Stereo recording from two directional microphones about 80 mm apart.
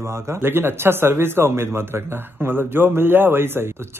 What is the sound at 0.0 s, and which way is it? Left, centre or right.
Speech, right.